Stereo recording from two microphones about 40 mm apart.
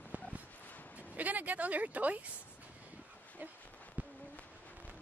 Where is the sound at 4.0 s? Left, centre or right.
Right.